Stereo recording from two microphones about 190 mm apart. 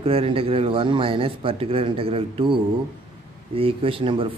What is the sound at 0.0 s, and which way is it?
Speech, 30° right (ahead or behind).